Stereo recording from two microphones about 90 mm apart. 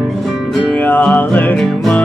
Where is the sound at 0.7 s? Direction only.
15° left (ahead or behind).